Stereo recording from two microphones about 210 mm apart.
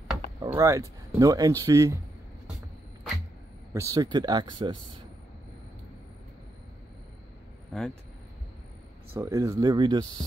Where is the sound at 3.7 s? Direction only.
15° right (ahead or behind).